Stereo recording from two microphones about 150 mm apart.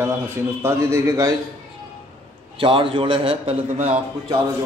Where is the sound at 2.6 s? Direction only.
35° right (ahead or behind).